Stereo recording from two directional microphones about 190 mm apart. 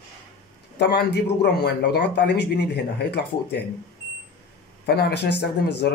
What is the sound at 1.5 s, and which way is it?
Speech, 60° left (ahead or behind).